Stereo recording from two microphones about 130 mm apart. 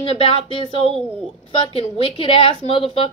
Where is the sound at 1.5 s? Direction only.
45° left (ahead or behind).